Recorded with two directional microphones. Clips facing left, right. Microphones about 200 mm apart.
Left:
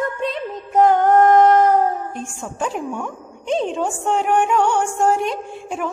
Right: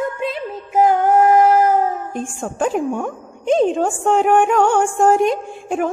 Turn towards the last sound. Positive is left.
turn(degrees=-50)  # may be behind; listen again after turning